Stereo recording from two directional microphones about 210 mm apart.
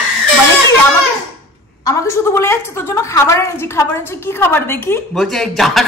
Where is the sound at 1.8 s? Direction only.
10° left (ahead or behind).